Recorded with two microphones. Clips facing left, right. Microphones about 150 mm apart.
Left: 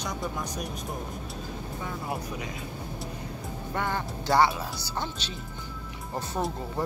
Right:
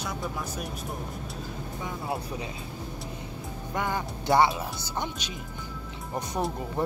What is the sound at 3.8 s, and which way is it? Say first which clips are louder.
A woman's voice: right 1 dB; 15° right (ahead or behind).